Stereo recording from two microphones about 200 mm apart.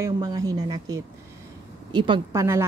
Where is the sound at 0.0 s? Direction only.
20° right (ahead or behind).